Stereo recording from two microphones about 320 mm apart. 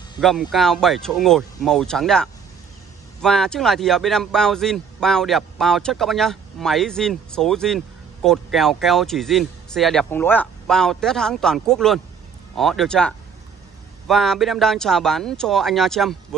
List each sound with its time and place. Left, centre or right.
0.2 s speech: centre